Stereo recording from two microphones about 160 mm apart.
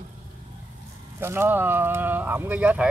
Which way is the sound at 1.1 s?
15° right (ahead or behind).